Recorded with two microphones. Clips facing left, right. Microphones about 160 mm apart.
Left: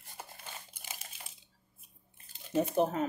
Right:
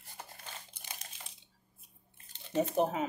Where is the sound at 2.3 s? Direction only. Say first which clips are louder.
Left 1 dB; 5° left (ahead or behind).